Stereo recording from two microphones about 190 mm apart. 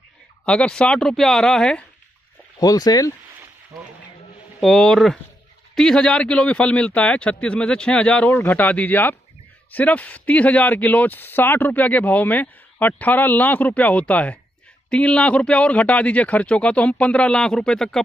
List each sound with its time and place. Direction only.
0.5 s speech: 5° left (ahead or behind)
2.6 s speech: 20° left (ahead or behind)
4.6 s speech: centre (ahead or behind)